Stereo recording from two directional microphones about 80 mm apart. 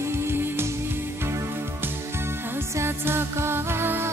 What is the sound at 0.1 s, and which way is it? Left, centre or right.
Music, right.